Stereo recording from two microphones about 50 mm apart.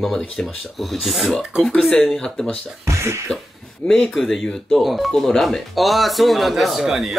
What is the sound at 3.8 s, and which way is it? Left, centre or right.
Speech, left.